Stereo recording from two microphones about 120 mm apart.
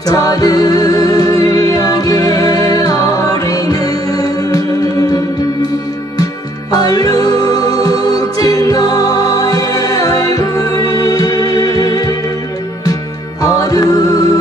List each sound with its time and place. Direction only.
0.1 s music: 30° left (ahead or behind)
6.7 s music: 35° left (ahead or behind)
13.4 s music: 30° left (ahead or behind)